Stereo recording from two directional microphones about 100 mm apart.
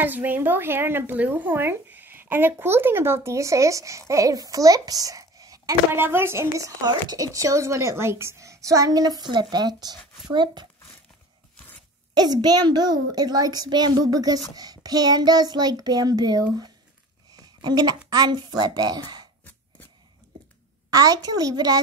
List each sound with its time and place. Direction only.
0.0 s speech: 20° right (ahead or behind); by 5.8 s 35° right (ahead or behind)
5.9 s a woman's voice: 20° right (ahead or behind); by 10.7 s 45° right (ahead or behind)
12.1 s a woman's voice: 45° right (ahead or behind)
17.3 s a sound: 45° right (ahead or behind)
18.1 s a woman's voice: 45° right (ahead or behind)
20.9 s a woman's voice: 40° right (ahead or behind)